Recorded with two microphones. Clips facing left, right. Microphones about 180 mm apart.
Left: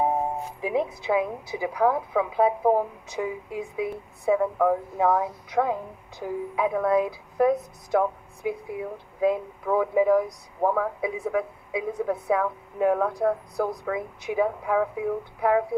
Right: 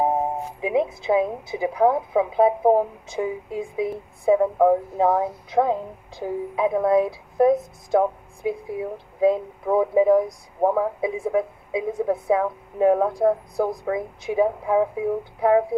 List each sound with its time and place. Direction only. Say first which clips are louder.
0.6 s speech: right 4 dB; 20° right (ahead or behind)